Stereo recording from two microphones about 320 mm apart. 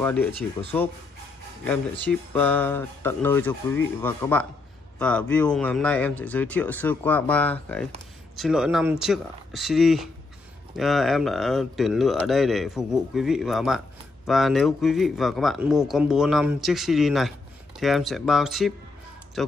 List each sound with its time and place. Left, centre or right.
0.0 s speech: centre